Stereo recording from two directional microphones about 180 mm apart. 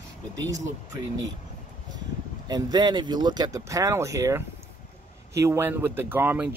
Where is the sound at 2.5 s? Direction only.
25° right (ahead or behind).